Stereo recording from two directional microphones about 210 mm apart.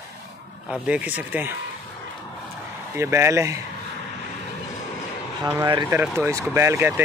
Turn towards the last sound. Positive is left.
turn(degrees=-10)  # may be behind; listen again after turning